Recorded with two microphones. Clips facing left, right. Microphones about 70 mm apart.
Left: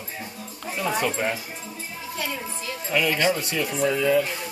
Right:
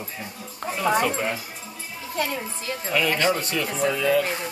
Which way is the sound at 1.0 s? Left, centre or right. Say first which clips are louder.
Right 1 dB; centre.